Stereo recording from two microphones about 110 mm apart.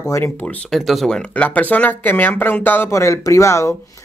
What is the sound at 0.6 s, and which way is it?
Speech, centre (ahead or behind).